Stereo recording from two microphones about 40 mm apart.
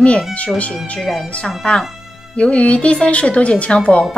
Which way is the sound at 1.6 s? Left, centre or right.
Left.